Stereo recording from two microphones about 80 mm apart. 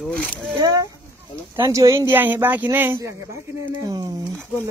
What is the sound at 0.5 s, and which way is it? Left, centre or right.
Speech, right.